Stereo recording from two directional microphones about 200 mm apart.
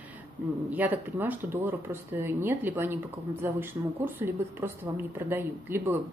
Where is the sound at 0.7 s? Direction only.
10° right (ahead or behind).